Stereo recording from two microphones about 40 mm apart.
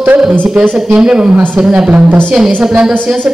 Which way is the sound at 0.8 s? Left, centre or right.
Right.